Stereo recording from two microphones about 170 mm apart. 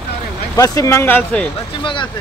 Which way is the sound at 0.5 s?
20° left (ahead or behind).